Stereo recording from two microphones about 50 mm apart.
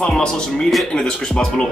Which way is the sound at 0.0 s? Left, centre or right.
Centre.